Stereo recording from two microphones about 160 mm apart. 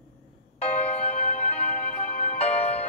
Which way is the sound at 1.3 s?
50° left (ahead or behind).